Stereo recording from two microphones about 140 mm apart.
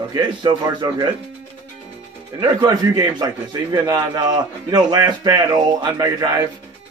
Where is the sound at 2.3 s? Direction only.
30° right (ahead or behind).